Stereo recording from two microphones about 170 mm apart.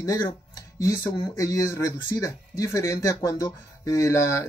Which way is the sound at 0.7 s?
20° left (ahead or behind).